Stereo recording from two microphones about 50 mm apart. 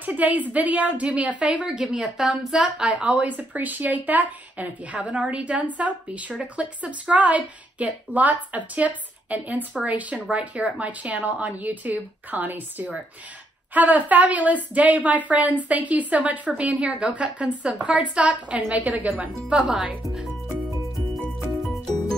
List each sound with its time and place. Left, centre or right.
0.0 s a woman's voice: right
1.7 s a woman's voice: centre
3.3 s a woman's voice: right
19.7 s speech: centre